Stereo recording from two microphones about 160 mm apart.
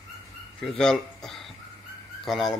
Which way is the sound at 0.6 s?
5° left (ahead or behind).